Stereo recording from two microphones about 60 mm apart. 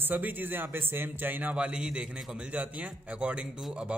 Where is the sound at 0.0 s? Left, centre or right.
Right; by 2.2 s centre.